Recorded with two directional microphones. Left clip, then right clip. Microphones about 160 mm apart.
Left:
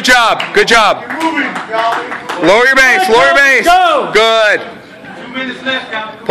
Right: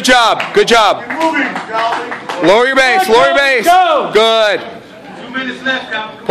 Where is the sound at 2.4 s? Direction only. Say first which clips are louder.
Left 2 dB; 10° right (ahead or behind).